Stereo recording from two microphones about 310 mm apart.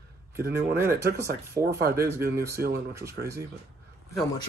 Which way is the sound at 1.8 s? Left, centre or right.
Right.